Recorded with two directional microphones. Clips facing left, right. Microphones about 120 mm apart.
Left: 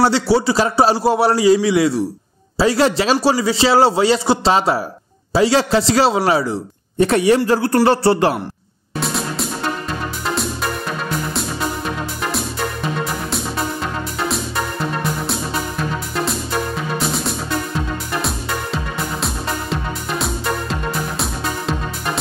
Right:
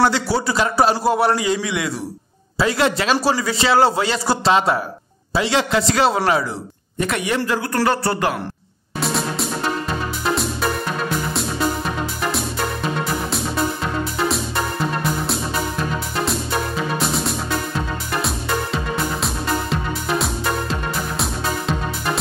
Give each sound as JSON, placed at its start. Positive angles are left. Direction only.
{"t": 0.0, "sound": "a man's voice", "side_deg": 30}
{"t": 9.0, "sound": "music", "side_deg": 0}
{"t": 12.2, "sound": "music", "side_deg": 0}
{"t": 17.1, "sound": "music", "side_deg": 0}
{"t": 19.2, "sound": "music", "side_deg": 0}